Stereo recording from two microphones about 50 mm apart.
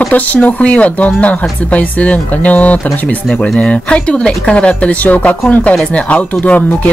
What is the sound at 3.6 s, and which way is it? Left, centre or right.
Speech, left.